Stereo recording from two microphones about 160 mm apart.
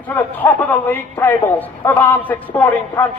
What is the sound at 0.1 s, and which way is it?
A man's voice, 10° left (ahead or behind).